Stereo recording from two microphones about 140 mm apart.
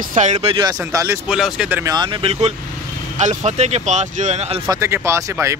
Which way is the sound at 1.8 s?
30° right (ahead or behind).